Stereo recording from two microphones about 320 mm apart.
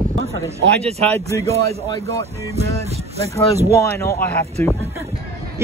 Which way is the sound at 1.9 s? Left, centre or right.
Centre.